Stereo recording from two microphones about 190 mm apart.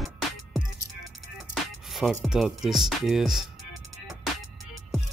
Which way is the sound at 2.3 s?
Centre (ahead or behind).